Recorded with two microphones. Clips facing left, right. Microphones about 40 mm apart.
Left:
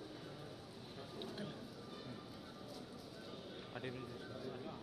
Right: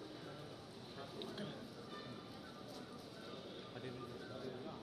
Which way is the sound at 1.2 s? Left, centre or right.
Right.